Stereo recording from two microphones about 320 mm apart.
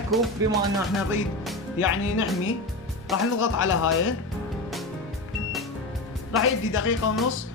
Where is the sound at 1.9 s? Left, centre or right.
Left.